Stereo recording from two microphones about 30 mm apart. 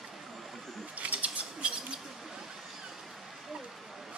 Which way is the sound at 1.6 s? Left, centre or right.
Right.